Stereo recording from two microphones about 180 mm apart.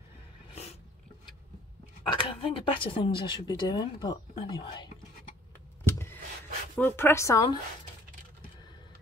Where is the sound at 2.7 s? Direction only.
30° left (ahead or behind).